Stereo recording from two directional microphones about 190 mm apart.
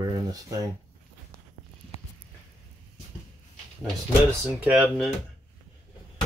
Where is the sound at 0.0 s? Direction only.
20° right (ahead or behind).